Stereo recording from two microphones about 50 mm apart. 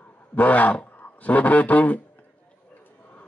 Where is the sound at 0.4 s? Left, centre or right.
Left.